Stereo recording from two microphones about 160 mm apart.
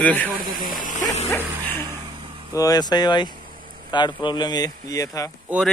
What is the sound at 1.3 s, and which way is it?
Music, 15° left (ahead or behind).